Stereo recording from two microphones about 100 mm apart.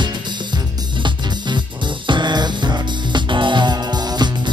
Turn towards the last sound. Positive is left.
turn(degrees=-50)  # may be behind; listen again after turning